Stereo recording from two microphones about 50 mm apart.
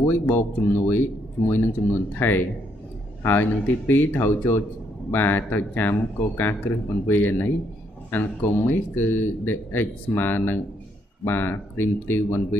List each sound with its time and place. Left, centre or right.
0.0 s speech: left